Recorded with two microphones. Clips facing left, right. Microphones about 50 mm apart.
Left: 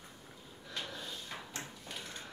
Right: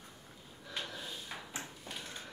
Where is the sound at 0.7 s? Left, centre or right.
Centre.